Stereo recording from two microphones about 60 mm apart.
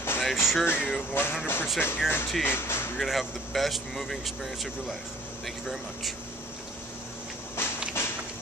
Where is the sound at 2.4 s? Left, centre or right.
Left.